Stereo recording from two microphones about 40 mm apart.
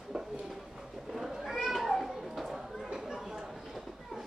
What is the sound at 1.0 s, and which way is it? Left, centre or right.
Cat, centre.